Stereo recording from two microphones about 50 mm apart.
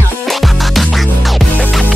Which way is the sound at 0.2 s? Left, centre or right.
Centre.